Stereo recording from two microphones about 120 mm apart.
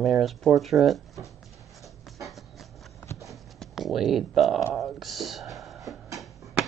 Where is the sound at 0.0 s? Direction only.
Centre (ahead or behind).